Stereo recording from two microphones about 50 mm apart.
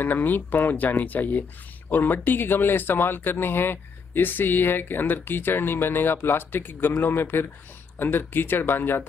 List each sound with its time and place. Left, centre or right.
0.0 s speech: left